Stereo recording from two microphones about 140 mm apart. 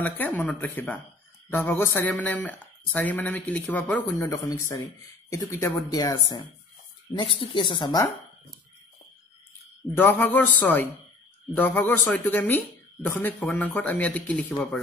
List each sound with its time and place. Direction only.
0.5 s speech: 10° left (ahead or behind)
4.3 s speech: 20° left (ahead or behind)
9.9 s speech: 15° left (ahead or behind)